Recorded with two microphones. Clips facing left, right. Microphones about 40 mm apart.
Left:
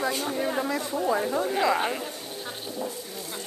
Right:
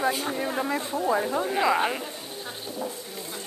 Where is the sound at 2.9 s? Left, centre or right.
Right.